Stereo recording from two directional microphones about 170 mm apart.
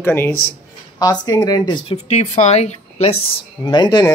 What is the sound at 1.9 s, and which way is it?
A woman's voice, 40° left (ahead or behind).